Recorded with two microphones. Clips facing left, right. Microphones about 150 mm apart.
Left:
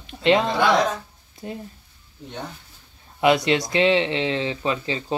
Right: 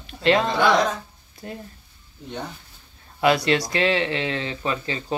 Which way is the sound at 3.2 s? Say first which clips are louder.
Left 1 dB; 20° left (ahead or behind).